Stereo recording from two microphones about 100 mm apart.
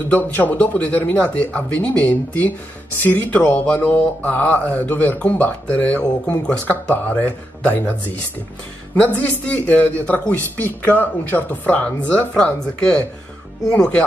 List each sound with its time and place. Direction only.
0.1 s speech: 15° left (ahead or behind)
13.7 s speech: 10° left (ahead or behind)